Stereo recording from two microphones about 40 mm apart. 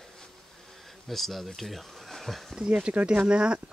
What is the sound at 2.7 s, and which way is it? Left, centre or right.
Speech, right.